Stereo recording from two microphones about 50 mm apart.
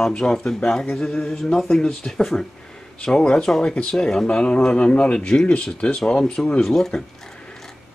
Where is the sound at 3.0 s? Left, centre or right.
Centre.